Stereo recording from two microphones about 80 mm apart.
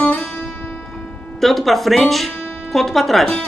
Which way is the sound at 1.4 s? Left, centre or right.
Centre.